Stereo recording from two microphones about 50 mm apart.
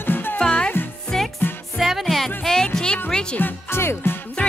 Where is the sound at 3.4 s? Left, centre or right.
Left.